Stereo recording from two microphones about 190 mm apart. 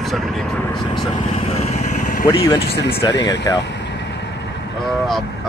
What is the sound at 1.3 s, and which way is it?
Vehicle, 35° left (ahead or behind).